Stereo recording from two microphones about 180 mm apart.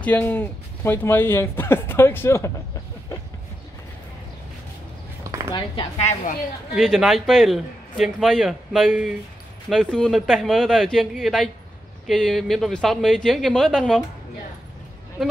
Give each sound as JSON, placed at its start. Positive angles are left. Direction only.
{"t": 0.0, "sound": "speech", "side_deg": 10}
{"t": 5.5, "sound": "speech", "side_deg": 25}
{"t": 6.7, "sound": "speech", "side_deg": 0}